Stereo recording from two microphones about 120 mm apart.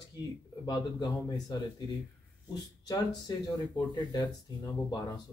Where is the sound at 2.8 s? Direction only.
30° left (ahead or behind).